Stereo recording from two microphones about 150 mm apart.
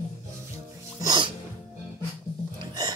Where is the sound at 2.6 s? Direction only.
25° right (ahead or behind).